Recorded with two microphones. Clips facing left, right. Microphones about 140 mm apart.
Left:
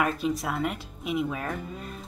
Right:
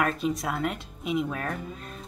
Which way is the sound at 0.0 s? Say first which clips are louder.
Even; centre (ahead or behind).